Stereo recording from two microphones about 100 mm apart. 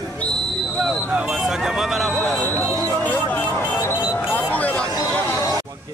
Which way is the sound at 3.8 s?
30° left (ahead or behind).